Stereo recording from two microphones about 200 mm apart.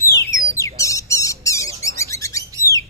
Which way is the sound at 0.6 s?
15° left (ahead or behind).